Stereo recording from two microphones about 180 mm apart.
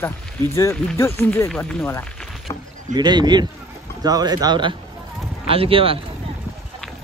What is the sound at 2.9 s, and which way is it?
Speech, 25° right (ahead or behind).